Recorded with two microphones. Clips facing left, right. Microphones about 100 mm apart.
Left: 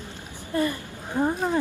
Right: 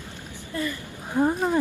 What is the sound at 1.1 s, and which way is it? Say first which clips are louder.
Speech: right 2 dB; 5° right (ahead or behind).